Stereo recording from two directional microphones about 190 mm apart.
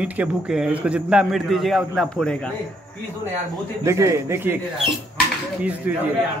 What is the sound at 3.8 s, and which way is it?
Speech, 15° right (ahead or behind).